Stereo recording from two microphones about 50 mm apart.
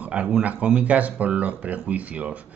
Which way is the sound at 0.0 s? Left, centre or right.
Right.